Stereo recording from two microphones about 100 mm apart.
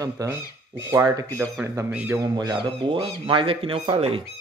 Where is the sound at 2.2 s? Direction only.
40° right (ahead or behind).